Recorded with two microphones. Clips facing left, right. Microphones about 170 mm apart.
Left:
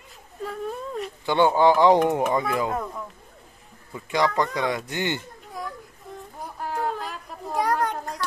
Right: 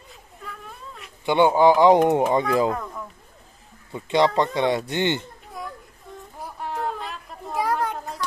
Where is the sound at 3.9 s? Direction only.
25° right (ahead or behind).